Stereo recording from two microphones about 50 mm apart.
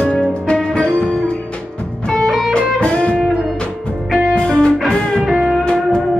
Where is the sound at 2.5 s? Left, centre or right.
Left.